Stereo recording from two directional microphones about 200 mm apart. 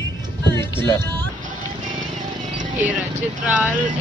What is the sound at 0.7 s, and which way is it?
Speech, 10° left (ahead or behind).